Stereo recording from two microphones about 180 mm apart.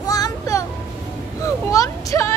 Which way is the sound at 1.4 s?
20° left (ahead or behind).